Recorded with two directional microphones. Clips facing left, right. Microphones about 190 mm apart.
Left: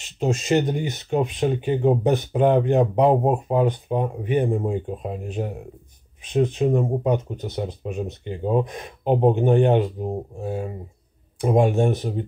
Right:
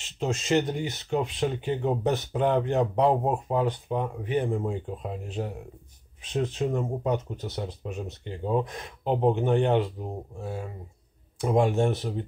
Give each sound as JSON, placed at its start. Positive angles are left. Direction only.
{"t": 0.0, "sound": "speech", "side_deg": 15}